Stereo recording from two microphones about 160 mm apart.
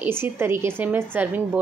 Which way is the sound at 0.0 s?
15° right (ahead or behind).